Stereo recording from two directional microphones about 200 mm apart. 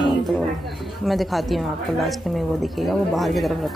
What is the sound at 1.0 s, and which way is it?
A woman's voice, centre (ahead or behind).